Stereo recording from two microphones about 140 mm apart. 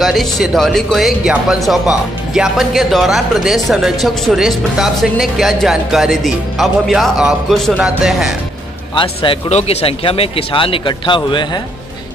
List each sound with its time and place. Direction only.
0.0 s speech: centre (ahead or behind)
8.9 s speech: 40° left (ahead or behind)